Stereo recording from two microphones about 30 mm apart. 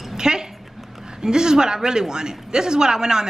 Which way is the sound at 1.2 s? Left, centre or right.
Right.